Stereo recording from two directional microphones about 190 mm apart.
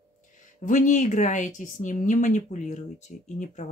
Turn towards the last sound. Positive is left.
turn(degrees=40)  # may be behind; listen again after turning